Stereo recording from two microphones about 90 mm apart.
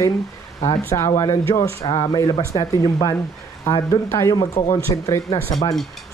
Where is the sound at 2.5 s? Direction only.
40° left (ahead or behind).